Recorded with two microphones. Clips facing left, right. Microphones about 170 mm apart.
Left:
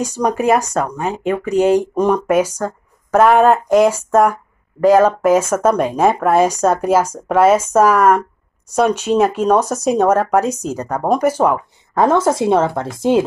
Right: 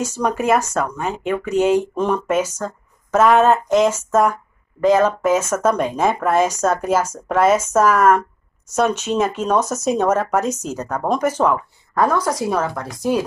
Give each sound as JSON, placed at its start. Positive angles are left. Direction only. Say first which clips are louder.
{"t": 0.3, "sound": "speech", "louder": "left 3 dB", "side_deg": 10}
{"t": 11.9, "sound": "speech", "louder": "left 5 dB", "side_deg": 25}